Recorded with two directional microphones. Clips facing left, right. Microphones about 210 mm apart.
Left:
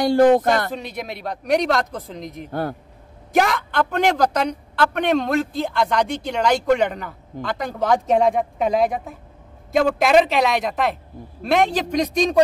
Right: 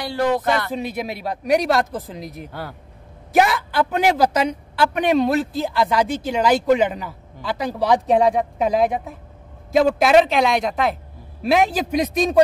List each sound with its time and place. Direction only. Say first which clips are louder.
0.0 s speech: left 6 dB; 50° left (ahead or behind)
0.7 s a woman's voice: right 4 dB; 5° right (ahead or behind)